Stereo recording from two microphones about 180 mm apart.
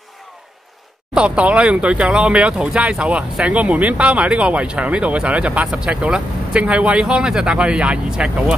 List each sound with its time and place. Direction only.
1.1 s speech: 5° right (ahead or behind)